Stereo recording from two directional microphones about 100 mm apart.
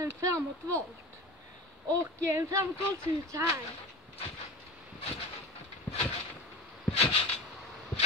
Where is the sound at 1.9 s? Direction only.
30° right (ahead or behind).